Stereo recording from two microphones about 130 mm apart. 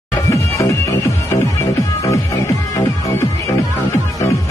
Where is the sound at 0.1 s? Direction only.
25° left (ahead or behind).